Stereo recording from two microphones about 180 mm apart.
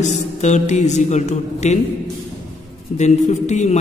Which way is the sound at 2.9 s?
40° left (ahead or behind).